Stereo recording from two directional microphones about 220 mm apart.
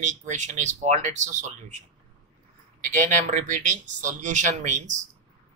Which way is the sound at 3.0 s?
35° right (ahead or behind).